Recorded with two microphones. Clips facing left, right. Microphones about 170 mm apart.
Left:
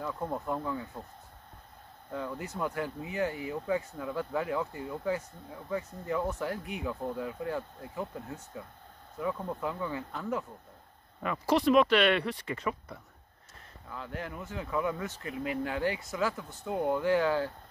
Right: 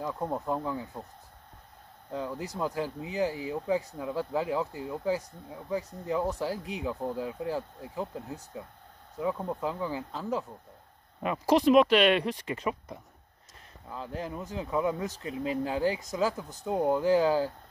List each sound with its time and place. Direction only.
0.0 s speech: 15° right (ahead or behind)
2.0 s speech: 20° right (ahead or behind)
2.5 s speech: 30° right (ahead or behind)
3.5 s speech: 20° right (ahead or behind)
6.2 s speech: 30° right (ahead or behind)
11.2 s speech: 15° right (ahead or behind); by 17.3 s 35° right (ahead or behind)